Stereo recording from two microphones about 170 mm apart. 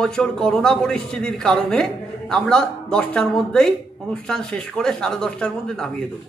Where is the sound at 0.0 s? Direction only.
5° left (ahead or behind).